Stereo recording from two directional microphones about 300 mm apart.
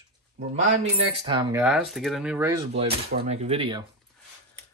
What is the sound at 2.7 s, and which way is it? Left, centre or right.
Speech, centre.